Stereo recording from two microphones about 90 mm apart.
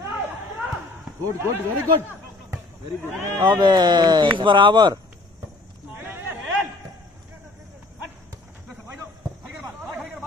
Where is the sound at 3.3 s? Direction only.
60° right (ahead or behind).